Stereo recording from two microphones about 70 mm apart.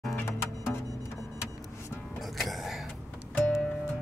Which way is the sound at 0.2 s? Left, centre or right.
Left.